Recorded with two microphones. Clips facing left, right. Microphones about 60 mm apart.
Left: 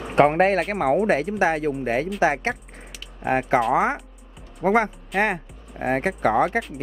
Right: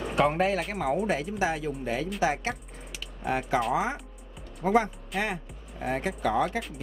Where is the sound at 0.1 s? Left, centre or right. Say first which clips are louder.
Left 8 dB; left.